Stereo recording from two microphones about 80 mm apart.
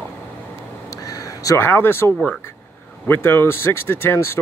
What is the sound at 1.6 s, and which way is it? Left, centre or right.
Speech, left.